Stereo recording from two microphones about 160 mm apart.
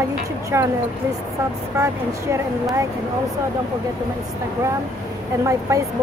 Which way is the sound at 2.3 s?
20° right (ahead or behind).